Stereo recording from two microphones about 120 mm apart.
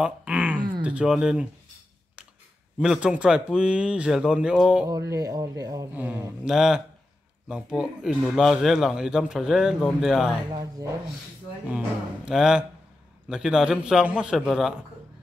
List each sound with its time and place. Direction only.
0.0 s a sound: 10° right (ahead or behind)
0.8 s speech: 10° right (ahead or behind)
2.8 s speech: 5° right (ahead or behind)
4.8 s speech: 30° right (ahead or behind)
5.9 s speech: 10° right (ahead or behind)
10.5 s speech: 30° right (ahead or behind)
12.3 s speech: 5° right (ahead or behind)